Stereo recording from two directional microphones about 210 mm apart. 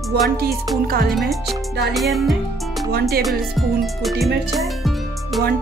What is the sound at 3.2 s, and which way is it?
Music, centre (ahead or behind).